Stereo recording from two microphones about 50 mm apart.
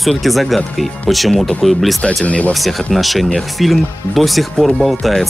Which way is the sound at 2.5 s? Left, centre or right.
Centre.